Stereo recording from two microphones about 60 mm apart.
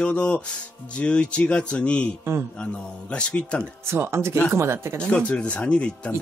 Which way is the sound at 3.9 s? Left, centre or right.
Right.